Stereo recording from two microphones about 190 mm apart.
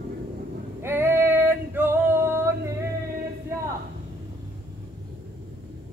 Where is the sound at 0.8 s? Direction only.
10° right (ahead or behind).